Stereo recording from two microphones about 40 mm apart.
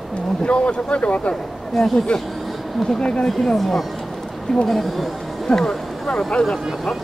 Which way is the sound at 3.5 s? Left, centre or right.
Centre.